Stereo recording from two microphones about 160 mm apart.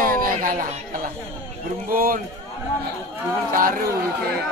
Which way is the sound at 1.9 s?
60° right (ahead or behind).